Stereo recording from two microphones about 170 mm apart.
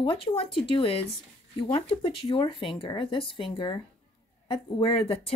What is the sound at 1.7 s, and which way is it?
Speech, 30° left (ahead or behind).